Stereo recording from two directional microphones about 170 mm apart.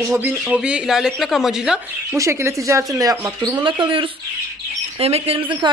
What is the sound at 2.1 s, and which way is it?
Speech, 20° right (ahead or behind).